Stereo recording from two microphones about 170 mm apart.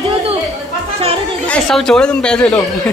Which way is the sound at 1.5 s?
5° left (ahead or behind).